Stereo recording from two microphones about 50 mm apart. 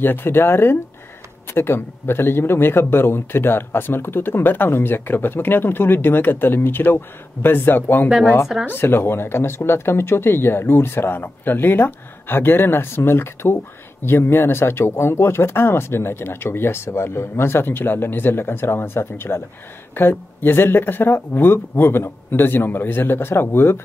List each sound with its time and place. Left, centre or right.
0.0 s speech: left
19.9 s speech: left